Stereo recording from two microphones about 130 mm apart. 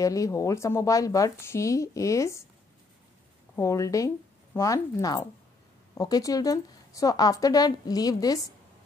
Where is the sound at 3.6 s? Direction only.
25° left (ahead or behind).